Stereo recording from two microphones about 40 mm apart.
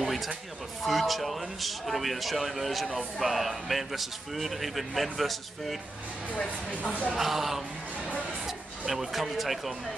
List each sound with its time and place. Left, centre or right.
0.0 s a sound: centre
0.8 s speech: centre
6.7 s speech: left
7.2 s speech: centre